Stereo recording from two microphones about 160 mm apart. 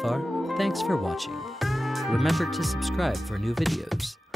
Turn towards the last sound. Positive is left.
turn(degrees=0)  # may be behind; listen again after turning